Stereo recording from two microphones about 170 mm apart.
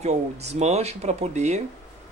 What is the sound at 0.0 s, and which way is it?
Speech, 40° right (ahead or behind).